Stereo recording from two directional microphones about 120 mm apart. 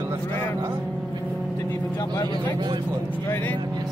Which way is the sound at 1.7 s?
25° left (ahead or behind).